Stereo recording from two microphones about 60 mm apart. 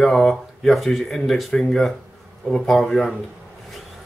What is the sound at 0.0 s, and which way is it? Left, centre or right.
A man's voice, centre.